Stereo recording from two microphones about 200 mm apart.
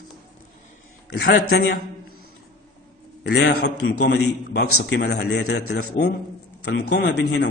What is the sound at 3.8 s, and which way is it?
A man's voice, 80° left.